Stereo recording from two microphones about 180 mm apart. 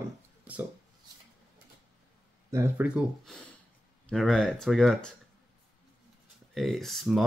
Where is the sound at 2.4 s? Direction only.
15° right (ahead or behind).